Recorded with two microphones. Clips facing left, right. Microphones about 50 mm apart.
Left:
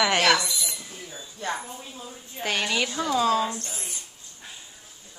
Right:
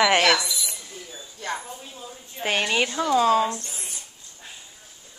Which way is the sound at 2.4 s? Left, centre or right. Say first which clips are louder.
Right 3 dB; right.